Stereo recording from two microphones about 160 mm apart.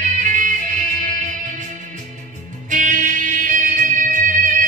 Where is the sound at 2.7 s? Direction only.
50° right (ahead or behind).